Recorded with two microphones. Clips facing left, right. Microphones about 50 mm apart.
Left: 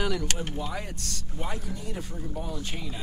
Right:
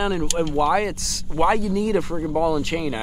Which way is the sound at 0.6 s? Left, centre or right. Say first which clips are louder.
Right 15 dB; right.